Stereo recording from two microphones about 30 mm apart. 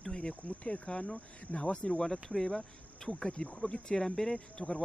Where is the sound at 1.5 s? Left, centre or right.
Left.